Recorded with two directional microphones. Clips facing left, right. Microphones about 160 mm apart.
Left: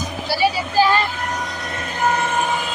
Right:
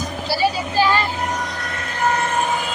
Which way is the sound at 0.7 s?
20° right (ahead or behind).